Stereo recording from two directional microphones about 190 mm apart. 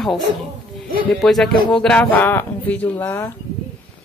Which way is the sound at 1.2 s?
Centre (ahead or behind).